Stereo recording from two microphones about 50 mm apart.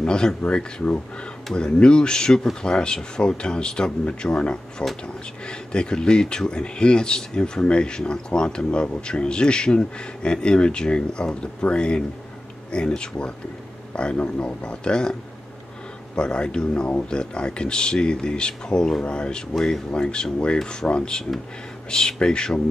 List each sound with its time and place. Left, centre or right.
0.0 s speech: centre
16.2 s speech: centre